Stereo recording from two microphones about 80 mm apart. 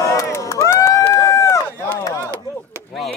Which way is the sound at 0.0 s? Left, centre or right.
Left.